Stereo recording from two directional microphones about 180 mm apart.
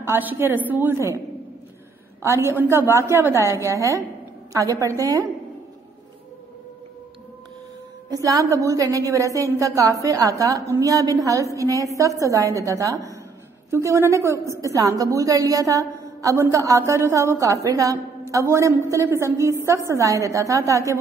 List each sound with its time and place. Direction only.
0.0 s a woman's voice: 10° right (ahead or behind)
2.2 s a woman's voice: 15° right (ahead or behind)
8.1 s a woman's voice: 20° right (ahead or behind)